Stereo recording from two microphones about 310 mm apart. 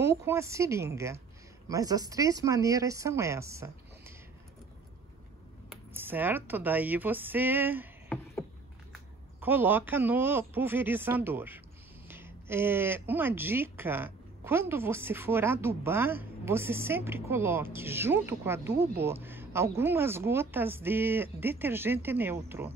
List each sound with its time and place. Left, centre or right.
0.0 s a woman's voice: centre
5.7 s a woman's voice: centre